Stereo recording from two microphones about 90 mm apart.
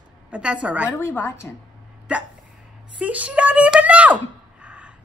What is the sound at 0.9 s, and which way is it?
Speech, 25° left (ahead or behind).